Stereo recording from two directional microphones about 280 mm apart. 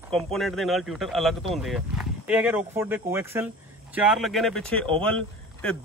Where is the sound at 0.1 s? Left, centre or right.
Centre.